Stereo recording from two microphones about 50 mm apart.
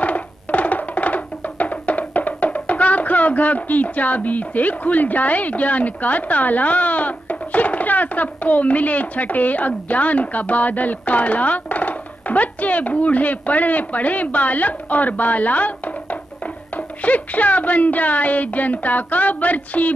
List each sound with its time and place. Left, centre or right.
0.0 s music: left